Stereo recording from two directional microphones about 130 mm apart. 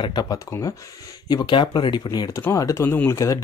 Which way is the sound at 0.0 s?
30° left (ahead or behind).